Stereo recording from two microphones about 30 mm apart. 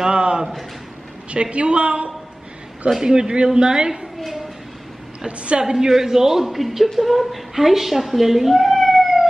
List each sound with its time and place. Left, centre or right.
0.0 s a man's voice: right
1.3 s a woman's voice: right
3.0 s a man's voice: right
5.4 s a woman's voice: right
5.7 s a man's voice: centre